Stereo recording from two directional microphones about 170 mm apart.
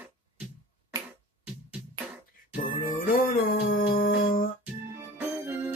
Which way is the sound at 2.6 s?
55° left (ahead or behind).